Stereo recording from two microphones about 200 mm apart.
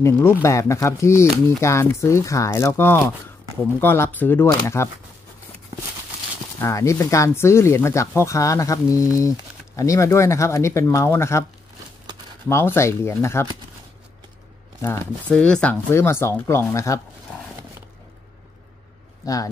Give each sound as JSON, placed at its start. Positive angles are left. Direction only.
{"t": 0.0, "sound": "speech", "side_deg": 15}
{"t": 6.6, "sound": "speech", "side_deg": 15}
{"t": 12.4, "sound": "speech", "side_deg": 10}
{"t": 14.8, "sound": "speech", "side_deg": 10}
{"t": 19.2, "sound": "speech", "side_deg": 15}